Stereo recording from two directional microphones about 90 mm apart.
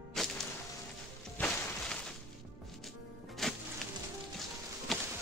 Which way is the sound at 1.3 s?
20° left (ahead or behind).